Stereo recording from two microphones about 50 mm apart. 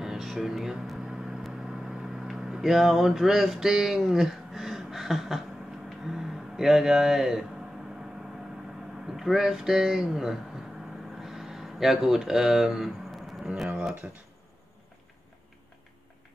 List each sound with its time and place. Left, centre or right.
0.0 s speech: centre
2.2 s a sound: centre
6.0 s speech: centre
9.1 s speech: centre
11.2 s a sound: centre
13.5 s speech: right